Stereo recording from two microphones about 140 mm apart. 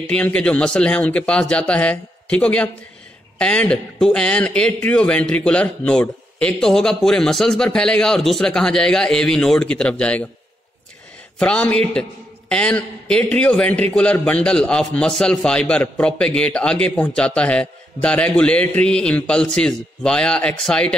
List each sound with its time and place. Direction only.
0.1 s a man's voice: 5° left (ahead or behind)
11.3 s a man's voice: 5° left (ahead or behind)